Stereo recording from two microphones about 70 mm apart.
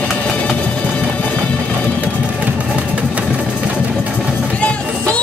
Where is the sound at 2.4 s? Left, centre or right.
Centre.